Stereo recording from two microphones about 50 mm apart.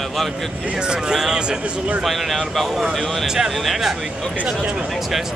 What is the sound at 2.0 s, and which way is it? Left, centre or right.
Speech, centre.